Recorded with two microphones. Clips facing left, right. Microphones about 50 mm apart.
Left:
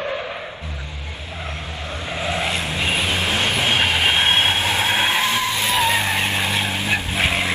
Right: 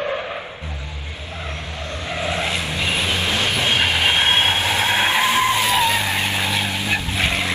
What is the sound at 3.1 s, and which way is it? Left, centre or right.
Vehicle, left.